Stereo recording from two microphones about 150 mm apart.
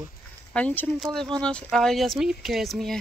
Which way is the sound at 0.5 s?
10° left (ahead or behind).